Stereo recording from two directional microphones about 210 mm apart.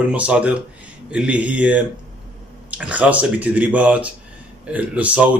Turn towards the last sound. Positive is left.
turn(degrees=-5)  # may be behind; listen again after turning